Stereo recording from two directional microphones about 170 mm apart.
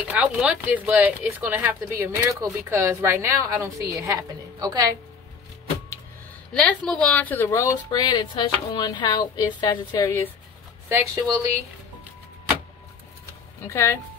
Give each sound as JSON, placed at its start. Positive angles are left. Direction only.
{"t": 0.1, "sound": "speech", "side_deg": -5}
{"t": 6.5, "sound": "speech", "side_deg": 5}
{"t": 10.9, "sound": "speech", "side_deg": -15}
{"t": 13.7, "sound": "speech", "side_deg": 15}